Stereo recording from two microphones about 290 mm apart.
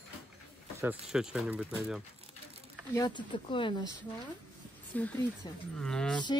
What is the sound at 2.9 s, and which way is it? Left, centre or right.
Speech, centre.